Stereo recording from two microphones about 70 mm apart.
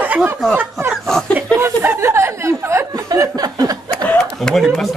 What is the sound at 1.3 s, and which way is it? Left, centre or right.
Chuckle, right.